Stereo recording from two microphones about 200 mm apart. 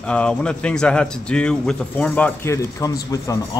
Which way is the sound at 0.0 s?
5° left (ahead or behind).